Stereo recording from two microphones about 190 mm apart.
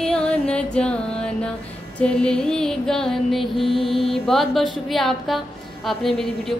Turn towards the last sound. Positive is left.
turn(degrees=0)  # may be behind; listen again after turning